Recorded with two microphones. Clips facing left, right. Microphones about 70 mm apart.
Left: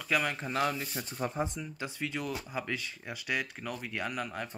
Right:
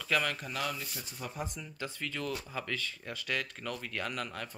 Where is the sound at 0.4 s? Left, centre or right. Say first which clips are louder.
Left 5 dB; left.